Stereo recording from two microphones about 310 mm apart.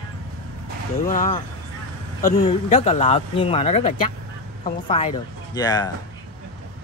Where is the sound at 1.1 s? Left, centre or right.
Left.